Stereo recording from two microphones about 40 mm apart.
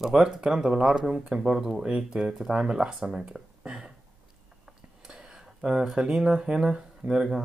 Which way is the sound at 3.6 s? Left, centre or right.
Right.